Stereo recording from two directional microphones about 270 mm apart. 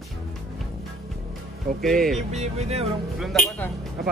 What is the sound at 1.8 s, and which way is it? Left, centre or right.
Speech, centre.